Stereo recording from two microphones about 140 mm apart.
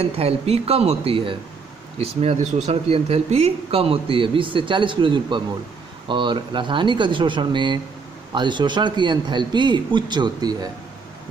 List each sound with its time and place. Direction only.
0.0 s speech: 45° right (ahead or behind); by 10.7 s 30° right (ahead or behind)